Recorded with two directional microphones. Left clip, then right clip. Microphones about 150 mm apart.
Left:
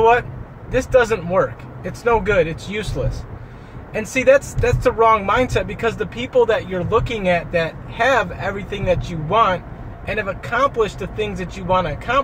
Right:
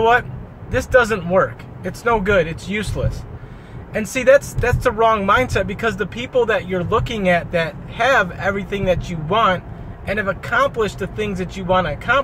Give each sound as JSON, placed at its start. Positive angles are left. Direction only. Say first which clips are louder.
{"t": 0.7, "sound": "speech", "louder": "even", "side_deg": -10}
{"t": 3.9, "sound": "speech", "louder": "right 1 dB", "side_deg": -15}